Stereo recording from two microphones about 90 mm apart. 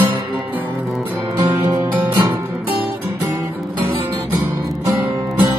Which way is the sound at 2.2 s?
40° right (ahead or behind).